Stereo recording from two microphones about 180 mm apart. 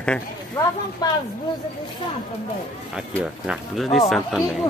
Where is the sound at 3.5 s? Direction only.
Centre (ahead or behind).